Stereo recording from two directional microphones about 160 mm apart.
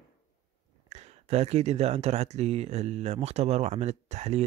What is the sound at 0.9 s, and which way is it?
Speech, 45° right (ahead or behind).